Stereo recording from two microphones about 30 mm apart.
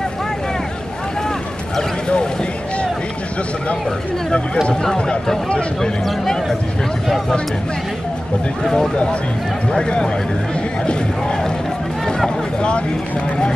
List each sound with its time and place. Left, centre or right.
8.6 s speech: centre
9.7 s a man's voice: left
12.5 s speech: left